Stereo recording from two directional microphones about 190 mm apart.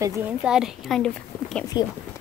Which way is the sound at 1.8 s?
20° left (ahead or behind).